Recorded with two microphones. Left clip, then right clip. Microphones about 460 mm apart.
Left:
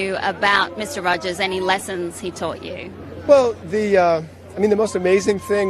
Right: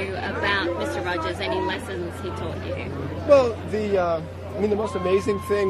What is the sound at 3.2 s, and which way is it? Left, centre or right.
Speech, left.